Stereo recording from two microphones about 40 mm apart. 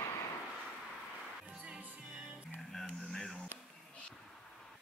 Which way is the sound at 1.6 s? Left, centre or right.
Right.